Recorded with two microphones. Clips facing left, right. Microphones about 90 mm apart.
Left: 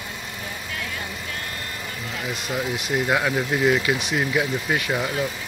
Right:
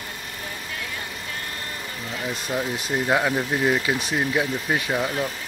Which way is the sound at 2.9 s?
30° right (ahead or behind).